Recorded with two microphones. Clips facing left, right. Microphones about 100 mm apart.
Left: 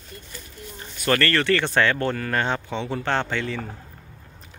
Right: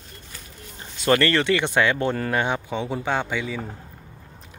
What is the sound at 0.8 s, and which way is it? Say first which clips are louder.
Speech: right 3 dB; 20° right (ahead or behind).